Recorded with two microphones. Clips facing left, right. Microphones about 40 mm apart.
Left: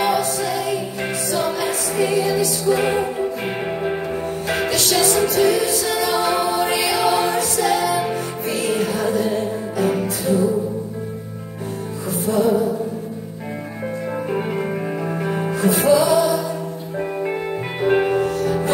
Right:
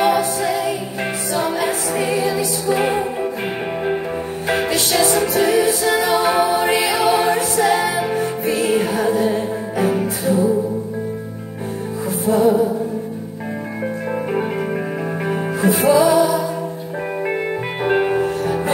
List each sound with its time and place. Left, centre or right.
0.0 s a capella: centre
1.3 s music: centre
4.6 s music: right
8.0 s music: centre
12.3 s music: centre
15.2 s music: centre
17.8 s music: centre